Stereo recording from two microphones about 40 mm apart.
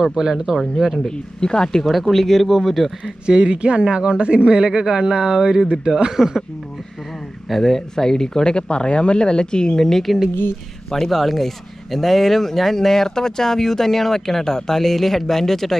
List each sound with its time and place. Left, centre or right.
0.1 s speech: centre
1.1 s speech: left
1.9 s speech: centre
3.3 s speech: right
7.4 s speech: centre
8.5 s speech: left; by 15.7 s centre